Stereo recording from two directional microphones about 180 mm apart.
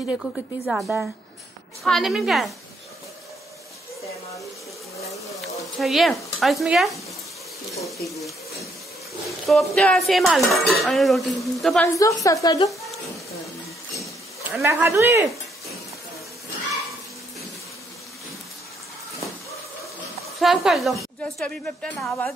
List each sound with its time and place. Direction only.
0.1 s dishes: 5° right (ahead or behind)
5.8 s dishes: centre (ahead or behind)
9.5 s dishes: 5° left (ahead or behind)
12.0 s a woman's voice: 20° left (ahead or behind)
14.6 s speech: 15° right (ahead or behind)
20.3 s dishes: centre (ahead or behind)